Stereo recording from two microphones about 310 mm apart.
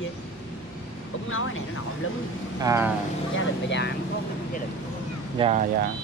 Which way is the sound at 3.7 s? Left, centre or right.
Left.